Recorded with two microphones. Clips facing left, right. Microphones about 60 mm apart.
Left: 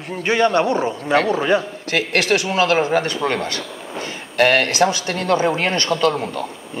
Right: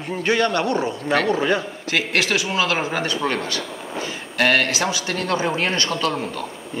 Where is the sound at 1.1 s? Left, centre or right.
Left.